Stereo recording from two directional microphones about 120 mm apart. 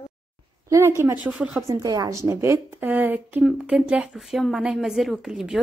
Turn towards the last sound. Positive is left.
turn(degrees=-5)  # may be behind; listen again after turning